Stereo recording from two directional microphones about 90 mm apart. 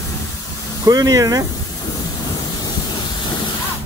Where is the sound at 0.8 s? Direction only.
40° right (ahead or behind).